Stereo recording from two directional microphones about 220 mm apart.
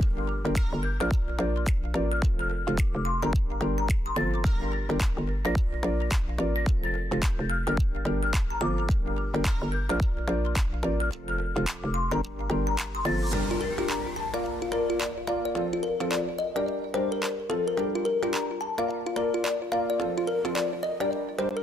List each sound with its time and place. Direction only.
0.0 s music: centre (ahead or behind)